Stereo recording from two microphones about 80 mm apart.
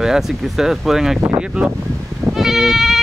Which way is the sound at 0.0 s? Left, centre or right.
Centre.